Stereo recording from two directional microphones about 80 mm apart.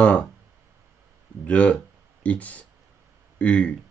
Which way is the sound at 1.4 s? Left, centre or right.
Centre.